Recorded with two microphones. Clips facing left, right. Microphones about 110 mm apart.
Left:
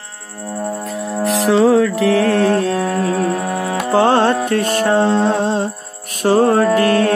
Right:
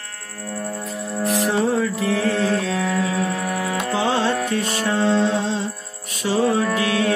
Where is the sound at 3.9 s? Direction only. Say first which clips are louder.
Left 9 dB; 50° left (ahead or behind).